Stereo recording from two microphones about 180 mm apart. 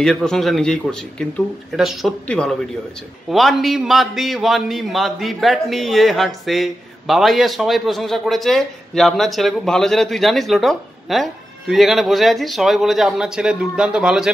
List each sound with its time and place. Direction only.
0.0 s a man's voice: centre (ahead or behind)